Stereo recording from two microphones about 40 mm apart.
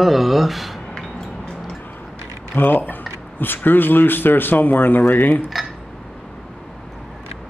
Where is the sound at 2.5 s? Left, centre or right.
Left.